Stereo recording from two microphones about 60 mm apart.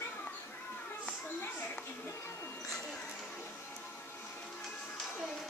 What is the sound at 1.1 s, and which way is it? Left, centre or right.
Children playing, left.